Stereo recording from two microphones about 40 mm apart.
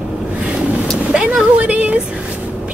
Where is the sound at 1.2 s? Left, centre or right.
Right.